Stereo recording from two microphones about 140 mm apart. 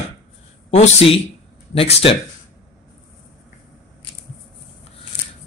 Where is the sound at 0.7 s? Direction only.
50° left (ahead or behind).